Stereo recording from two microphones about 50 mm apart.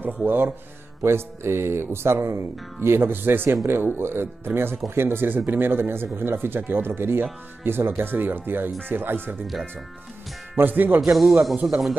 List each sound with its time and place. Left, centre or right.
0.0 s speech: right
1.0 s speech: right
10.5 s speech: right
11.0 s speech: centre